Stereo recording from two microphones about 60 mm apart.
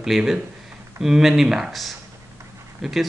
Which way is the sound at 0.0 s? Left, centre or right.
Centre.